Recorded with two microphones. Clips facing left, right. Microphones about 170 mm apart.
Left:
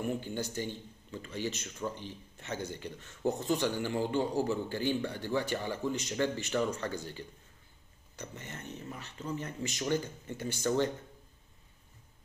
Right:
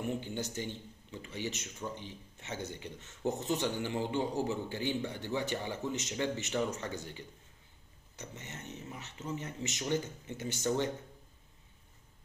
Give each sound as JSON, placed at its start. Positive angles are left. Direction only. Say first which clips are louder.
{"t": 0.2, "sound": "a man's voice", "louder": "left 2 dB", "side_deg": -20}
{"t": 8.2, "sound": "a man's voice", "louder": "left 2 dB", "side_deg": -20}